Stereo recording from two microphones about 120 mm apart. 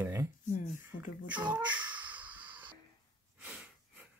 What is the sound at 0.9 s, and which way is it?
Beatboxing, 90° left.